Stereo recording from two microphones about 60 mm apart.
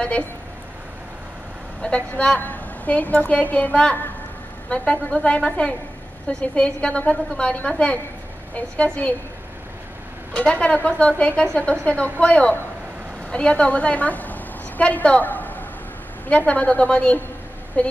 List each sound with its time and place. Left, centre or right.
1.8 s a woman's voice: centre
10.3 s a woman's voice: left